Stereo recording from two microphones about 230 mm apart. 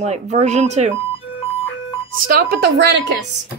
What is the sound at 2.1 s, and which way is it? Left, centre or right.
Speech, right.